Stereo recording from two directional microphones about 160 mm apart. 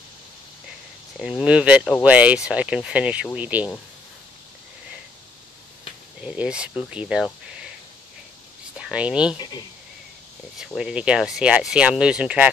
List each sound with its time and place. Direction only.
1.4 s speech: 5° right (ahead or behind)
6.2 s speech: 10° right (ahead or behind)
8.7 s speech: 5° right (ahead or behind)
9.4 s speech: 25° left (ahead or behind)
10.6 s speech: 5° right (ahead or behind)